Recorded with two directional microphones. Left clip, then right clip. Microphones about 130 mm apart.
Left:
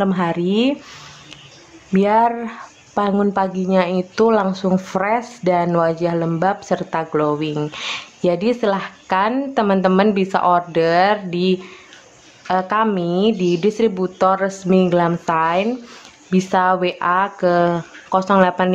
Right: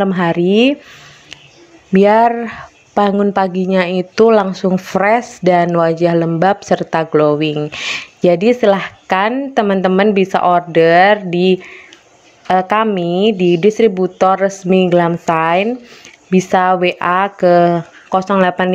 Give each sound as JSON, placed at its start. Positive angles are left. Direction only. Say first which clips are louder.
{"t": 0.0, "sound": "speech", "louder": "right 5 dB", "side_deg": -30}
{"t": 1.9, "sound": "speech", "louder": "right 6 dB", "side_deg": -30}